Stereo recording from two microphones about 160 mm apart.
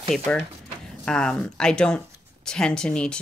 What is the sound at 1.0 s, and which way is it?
Speech, 5° left (ahead or behind).